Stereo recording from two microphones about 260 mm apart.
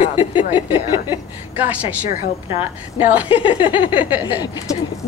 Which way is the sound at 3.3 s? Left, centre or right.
Centre.